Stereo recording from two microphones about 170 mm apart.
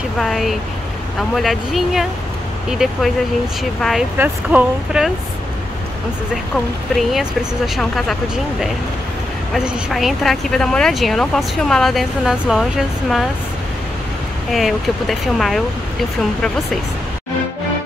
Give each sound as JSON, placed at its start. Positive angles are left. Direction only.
{"t": 0.2, "sound": "speech", "side_deg": 0}
{"t": 4.2, "sound": "speech", "side_deg": -10}
{"t": 6.3, "sound": "speech", "side_deg": 0}
{"t": 14.5, "sound": "speech", "side_deg": 0}